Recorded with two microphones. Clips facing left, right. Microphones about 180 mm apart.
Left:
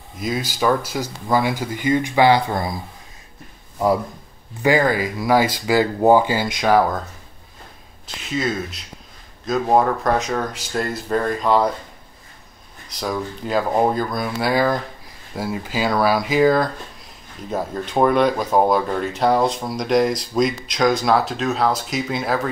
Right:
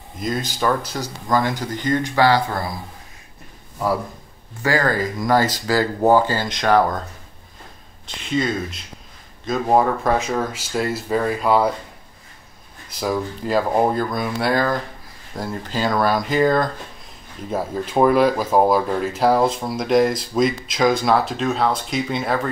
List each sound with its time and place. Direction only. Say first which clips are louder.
0.2 s speech: left 1 dB; 5° left (ahead or behind)
4.6 s speech: left 3 dB; 15° left (ahead or behind)
8.2 s speech: right 2 dB; centre (ahead or behind)
13.0 s speech: right 2 dB; 5° right (ahead or behind)